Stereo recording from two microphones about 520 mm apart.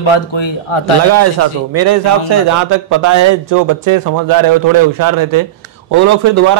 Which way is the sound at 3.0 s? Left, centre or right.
Right.